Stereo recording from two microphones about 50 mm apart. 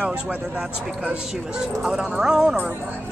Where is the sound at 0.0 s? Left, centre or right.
Right.